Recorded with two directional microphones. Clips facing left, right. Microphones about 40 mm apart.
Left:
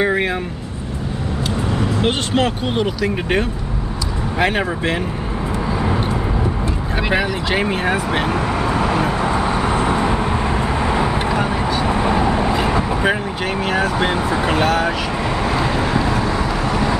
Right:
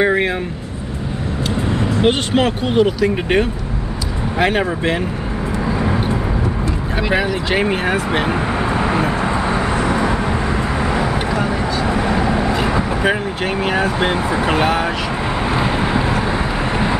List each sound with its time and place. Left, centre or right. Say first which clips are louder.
0.0 s vehicle: right 2 dB; centre
2.0 s speech: right 4 dB; centre
5.7 s vehicle: right 2 dB; centre
7.2 s speech: right 2 dB; centre
8.3 s vehicle: even; centre
12.2 s speech: even; centre
15.4 s vehicle: right 2 dB; centre